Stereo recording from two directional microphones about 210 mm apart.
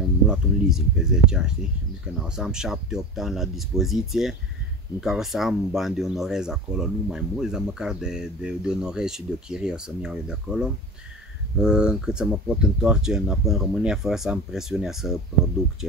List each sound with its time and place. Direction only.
0.3 s speech: 5° right (ahead or behind)